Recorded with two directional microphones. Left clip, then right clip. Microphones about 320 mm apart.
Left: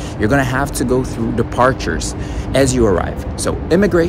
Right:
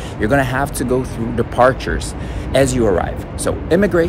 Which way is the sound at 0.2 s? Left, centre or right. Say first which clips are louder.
Even; centre.